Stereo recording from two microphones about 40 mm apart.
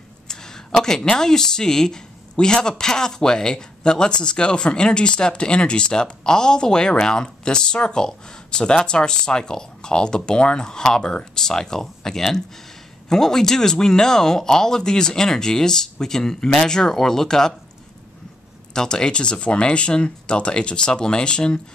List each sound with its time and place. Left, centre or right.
0.3 s a sound: centre
1.1 s speech: centre
18.7 s speech: centre